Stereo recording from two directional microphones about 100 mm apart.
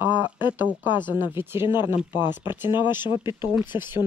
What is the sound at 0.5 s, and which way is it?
Speech, 20° right (ahead or behind).